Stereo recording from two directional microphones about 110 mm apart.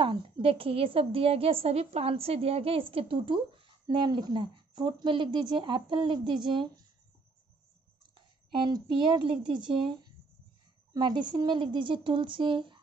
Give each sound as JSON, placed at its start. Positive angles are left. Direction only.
{"t": 0.0, "sound": "a woman's voice", "side_deg": -55}
{"t": 8.5, "sound": "a woman's voice", "side_deg": -40}